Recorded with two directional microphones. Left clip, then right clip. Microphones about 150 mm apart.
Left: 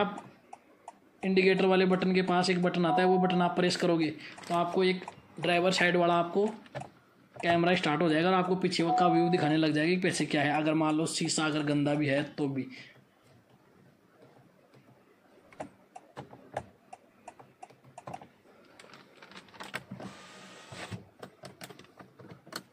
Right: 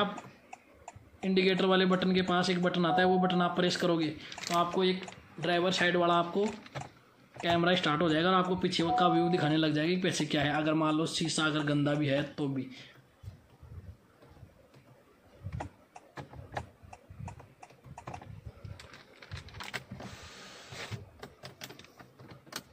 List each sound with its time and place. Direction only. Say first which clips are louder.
1.2 s speech: left 3 dB; 15° left (ahead or behind)
4.5 s speech: left 1 dB; 30° left (ahead or behind)